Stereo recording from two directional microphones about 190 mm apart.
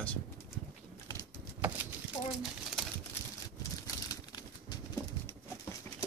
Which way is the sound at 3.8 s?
20° left (ahead or behind).